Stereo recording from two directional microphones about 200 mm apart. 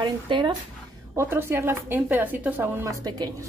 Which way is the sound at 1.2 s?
10° right (ahead or behind).